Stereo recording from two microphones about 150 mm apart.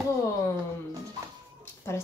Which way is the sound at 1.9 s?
15° left (ahead or behind).